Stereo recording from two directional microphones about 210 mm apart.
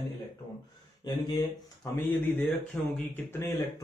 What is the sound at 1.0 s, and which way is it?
Speech, 20° left (ahead or behind).